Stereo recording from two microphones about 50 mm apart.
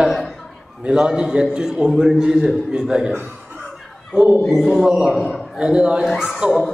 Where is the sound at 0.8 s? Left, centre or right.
Centre.